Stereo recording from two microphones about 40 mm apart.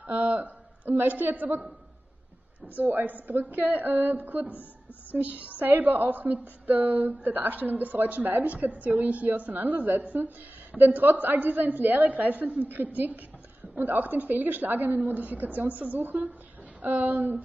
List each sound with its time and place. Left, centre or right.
0.0 s a man's voice: right
2.7 s a woman's voice: right
15.0 s a woman's voice: right